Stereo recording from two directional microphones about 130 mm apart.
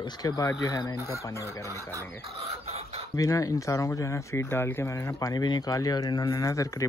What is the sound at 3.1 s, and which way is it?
Speech, 25° left (ahead or behind).